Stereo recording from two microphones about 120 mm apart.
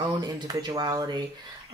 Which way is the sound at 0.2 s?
35° right (ahead or behind).